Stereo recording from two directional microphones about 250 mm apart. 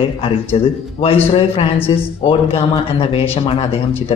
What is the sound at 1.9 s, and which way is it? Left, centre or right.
Speech, centre.